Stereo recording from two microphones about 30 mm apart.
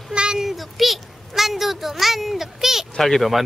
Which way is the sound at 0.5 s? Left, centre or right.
Centre.